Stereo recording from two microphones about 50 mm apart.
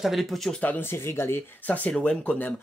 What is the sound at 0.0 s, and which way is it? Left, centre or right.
Speech, centre.